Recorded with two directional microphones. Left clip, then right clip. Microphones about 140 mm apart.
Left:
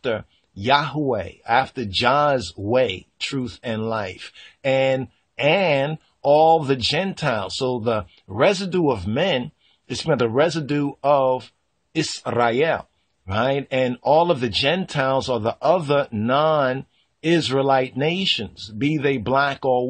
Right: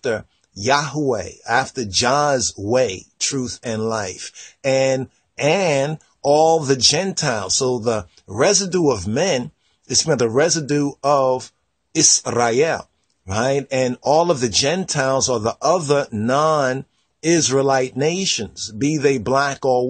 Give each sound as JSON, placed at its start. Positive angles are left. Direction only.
{"t": 0.0, "sound": "speech", "side_deg": -45}